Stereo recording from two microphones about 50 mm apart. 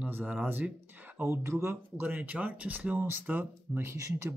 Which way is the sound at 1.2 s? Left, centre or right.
Right.